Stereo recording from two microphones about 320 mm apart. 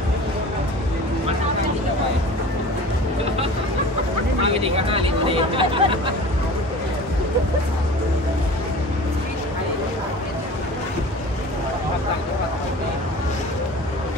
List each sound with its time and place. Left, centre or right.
4.4 s speech: centre